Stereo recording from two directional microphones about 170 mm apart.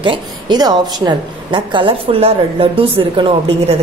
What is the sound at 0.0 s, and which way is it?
A woman's voice, 25° right (ahead or behind).